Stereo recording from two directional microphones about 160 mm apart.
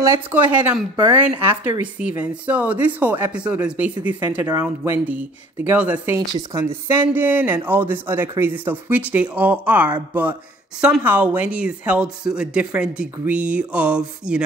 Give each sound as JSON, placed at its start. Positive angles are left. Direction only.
{"t": 0.0, "sound": "speech", "side_deg": -15}